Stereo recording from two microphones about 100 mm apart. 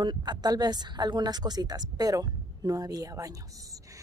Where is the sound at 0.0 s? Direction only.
50° right (ahead or behind).